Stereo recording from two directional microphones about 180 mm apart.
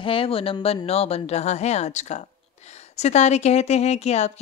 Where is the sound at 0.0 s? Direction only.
30° left (ahead or behind).